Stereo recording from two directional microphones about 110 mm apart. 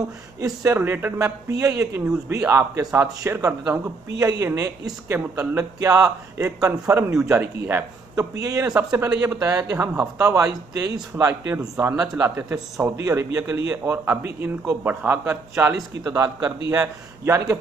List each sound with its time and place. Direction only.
0.4 s speech: 25° right (ahead or behind)
8.4 s speech: 30° right (ahead or behind)
8.7 s speech: 15° right (ahead or behind)
9.2 s speech: 25° right (ahead or behind)